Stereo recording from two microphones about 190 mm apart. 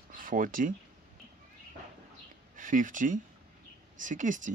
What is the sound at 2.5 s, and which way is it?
Speech, 45° right (ahead or behind).